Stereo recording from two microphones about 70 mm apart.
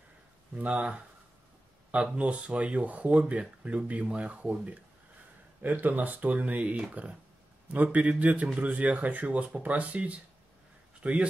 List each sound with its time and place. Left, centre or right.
0.6 s speech: right